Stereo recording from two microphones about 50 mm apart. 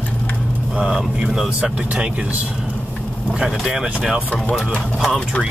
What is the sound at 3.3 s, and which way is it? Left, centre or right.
Speech, centre.